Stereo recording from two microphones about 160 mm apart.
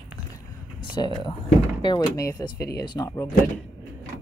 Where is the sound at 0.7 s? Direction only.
30° left (ahead or behind).